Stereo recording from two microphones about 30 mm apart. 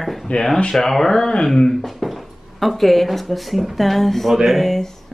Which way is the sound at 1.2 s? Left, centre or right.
Left.